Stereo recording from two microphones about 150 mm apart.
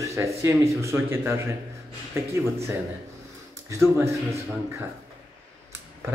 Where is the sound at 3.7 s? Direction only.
20° right (ahead or behind).